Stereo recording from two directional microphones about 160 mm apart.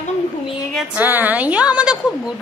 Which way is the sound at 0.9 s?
10° right (ahead or behind).